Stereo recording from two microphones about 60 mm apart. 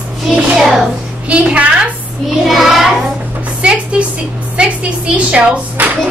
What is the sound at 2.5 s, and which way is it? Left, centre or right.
Child singing, centre.